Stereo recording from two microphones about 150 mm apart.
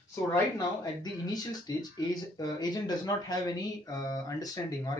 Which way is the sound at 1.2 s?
25° left (ahead or behind).